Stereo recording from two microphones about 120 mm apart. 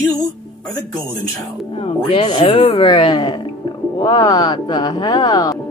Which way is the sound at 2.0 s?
45° left (ahead or behind).